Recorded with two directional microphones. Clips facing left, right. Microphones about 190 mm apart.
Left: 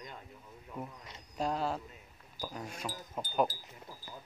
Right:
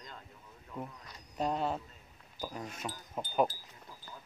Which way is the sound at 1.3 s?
Centre (ahead or behind).